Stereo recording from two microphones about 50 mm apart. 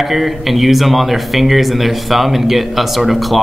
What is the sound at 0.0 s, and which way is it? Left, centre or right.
Speech, centre.